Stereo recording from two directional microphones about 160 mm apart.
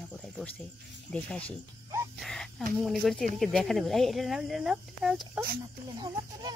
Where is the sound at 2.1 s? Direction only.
Centre (ahead or behind).